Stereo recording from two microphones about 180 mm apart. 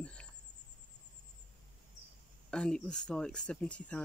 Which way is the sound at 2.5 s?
5° left (ahead or behind).